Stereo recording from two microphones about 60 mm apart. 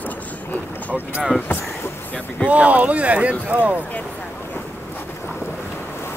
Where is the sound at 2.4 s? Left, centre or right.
Right.